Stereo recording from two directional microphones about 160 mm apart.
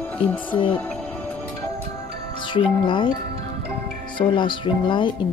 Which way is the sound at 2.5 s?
30° left (ahead or behind).